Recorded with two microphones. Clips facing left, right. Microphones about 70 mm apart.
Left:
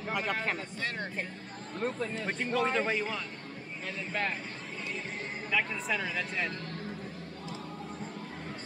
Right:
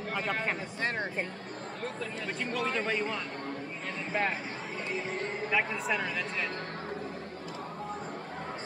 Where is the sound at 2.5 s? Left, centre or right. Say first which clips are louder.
Left 2 dB; centre.